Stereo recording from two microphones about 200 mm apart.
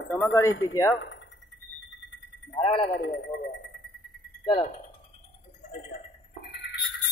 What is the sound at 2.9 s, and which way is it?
Speech, 55° left (ahead or behind).